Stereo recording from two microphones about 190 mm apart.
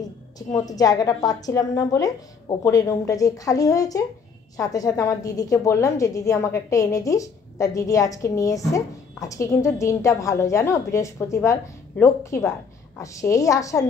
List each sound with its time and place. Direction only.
0.4 s a woman's voice: 20° left (ahead or behind)